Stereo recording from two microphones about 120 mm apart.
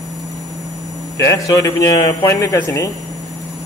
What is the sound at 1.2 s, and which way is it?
A man's voice, 30° left (ahead or behind).